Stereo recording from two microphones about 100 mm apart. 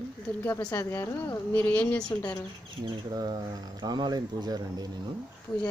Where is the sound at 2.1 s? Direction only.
35° left (ahead or behind).